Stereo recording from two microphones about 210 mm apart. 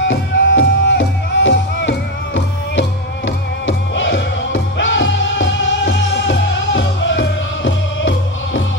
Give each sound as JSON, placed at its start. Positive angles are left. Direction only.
{"t": 0.0, "sound": "music", "side_deg": 60}